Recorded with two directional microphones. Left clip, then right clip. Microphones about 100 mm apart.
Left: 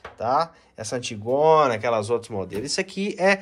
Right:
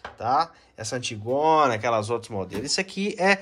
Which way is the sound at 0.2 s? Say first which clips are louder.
Left 1 dB; 15° right (ahead or behind).